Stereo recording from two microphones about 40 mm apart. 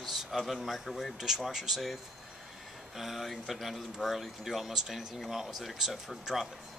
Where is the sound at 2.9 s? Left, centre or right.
Centre.